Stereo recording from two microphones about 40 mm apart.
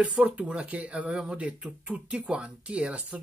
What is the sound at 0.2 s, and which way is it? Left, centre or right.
Speech, right.